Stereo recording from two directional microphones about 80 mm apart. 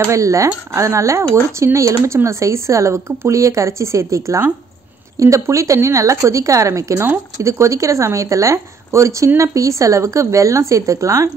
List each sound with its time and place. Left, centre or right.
0.0 s speech: right